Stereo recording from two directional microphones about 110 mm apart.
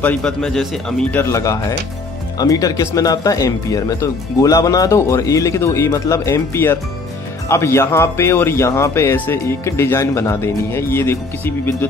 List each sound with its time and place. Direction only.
0.0 s a man's voice: 10° left (ahead or behind)
1.1 s speech: 25° left (ahead or behind)